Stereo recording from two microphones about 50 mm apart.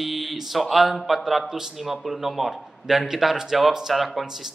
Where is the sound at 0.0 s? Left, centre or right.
Centre.